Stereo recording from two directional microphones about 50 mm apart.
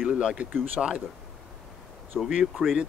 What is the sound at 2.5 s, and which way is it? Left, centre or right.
Speech, centre.